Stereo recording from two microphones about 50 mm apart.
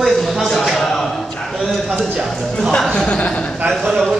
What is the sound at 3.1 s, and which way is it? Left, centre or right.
Speech, left.